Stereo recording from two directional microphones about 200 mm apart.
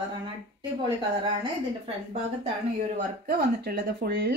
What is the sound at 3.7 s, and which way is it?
Speech, 55° right (ahead or behind).